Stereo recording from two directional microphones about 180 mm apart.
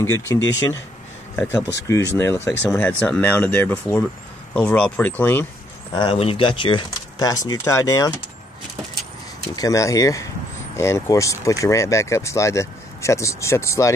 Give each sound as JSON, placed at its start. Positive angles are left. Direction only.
{"t": 0.0, "sound": "speech", "side_deg": 15}
{"t": 1.9, "sound": "speech", "side_deg": 15}
{"t": 5.9, "sound": "speech", "side_deg": 30}
{"t": 9.6, "sound": "speech", "side_deg": 20}